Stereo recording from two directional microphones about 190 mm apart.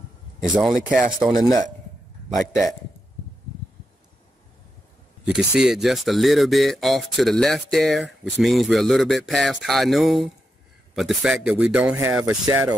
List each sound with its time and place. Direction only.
0.6 s speech: 5° right (ahead or behind)
5.2 s speech: 5° right (ahead or behind)
12.4 s speech: 20° right (ahead or behind)